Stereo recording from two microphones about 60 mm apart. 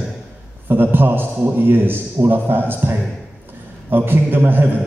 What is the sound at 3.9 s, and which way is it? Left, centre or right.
Speech, right.